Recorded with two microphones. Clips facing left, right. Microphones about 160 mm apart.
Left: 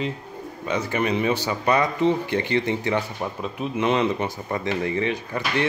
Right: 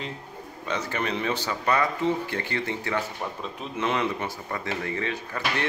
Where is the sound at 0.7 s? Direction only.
10° left (ahead or behind).